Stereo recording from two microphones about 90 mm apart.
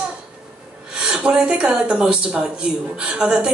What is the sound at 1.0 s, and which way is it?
Speech, 10° right (ahead or behind).